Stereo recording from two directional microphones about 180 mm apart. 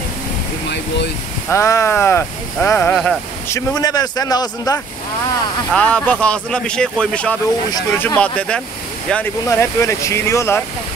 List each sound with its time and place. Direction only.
0.7 s air conditioning: 70° left (ahead or behind)
1.5 s speech: 15° left (ahead or behind)
2.9 s speech: centre (ahead or behind)
3.4 s speech: 20° left (ahead or behind)
5.7 s speech: 5° left (ahead or behind)